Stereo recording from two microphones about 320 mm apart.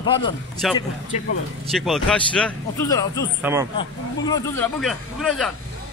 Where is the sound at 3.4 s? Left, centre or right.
Centre.